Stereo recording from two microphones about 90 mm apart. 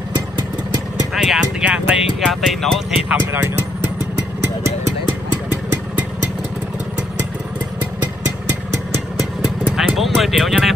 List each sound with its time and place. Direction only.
1.1 s music: 5° right (ahead or behind)
2.1 s speech: centre (ahead or behind)
3.3 s speech: 25° right (ahead or behind)
9.7 s clip-clop: centre (ahead or behind)